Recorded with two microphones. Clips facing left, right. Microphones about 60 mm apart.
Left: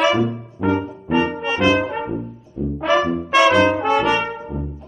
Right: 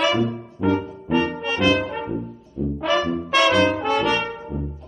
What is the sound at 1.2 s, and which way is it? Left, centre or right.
Brass instrument, centre.